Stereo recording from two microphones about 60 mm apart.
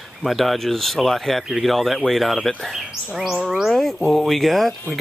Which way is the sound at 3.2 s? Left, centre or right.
Centre.